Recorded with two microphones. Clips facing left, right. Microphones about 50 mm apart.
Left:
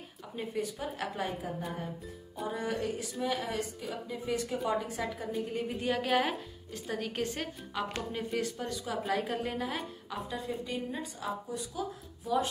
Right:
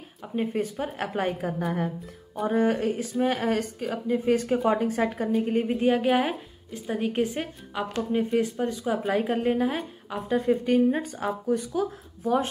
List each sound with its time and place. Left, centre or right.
0.4 s speech: right
1.2 s a woman's voice: right
2.4 s speech: right
3.3 s a woman's voice: right
3.9 s speech: right
5.7 s a woman's voice: right
6.1 s a woman's voice: centre
10.3 s speech: right